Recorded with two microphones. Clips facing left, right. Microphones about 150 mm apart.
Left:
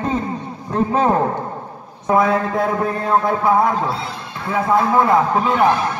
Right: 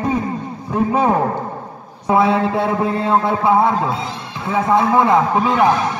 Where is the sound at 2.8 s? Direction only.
25° right (ahead or behind).